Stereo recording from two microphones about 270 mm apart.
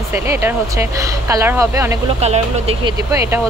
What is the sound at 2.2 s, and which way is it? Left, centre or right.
Speech, right.